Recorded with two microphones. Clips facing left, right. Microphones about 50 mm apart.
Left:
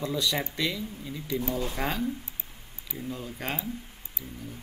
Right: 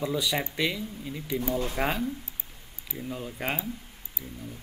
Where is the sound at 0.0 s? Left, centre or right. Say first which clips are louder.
Right 1 dB; centre.